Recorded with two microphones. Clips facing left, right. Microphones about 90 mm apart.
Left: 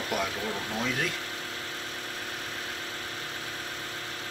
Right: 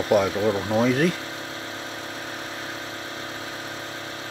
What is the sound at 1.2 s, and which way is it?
Vehicle, 20° right (ahead or behind).